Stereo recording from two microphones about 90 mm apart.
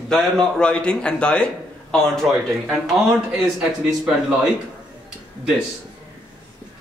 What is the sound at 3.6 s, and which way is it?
Speech, 5° right (ahead or behind).